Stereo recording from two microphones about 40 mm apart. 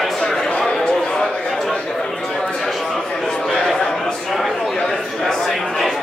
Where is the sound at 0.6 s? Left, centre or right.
Centre.